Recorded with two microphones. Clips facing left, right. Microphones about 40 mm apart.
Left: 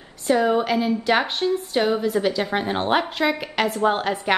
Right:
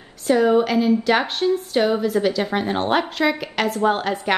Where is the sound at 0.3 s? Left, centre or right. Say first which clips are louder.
Right 3 dB; centre.